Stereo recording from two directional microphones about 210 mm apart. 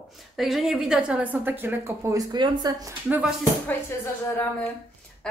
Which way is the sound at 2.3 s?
20° right (ahead or behind).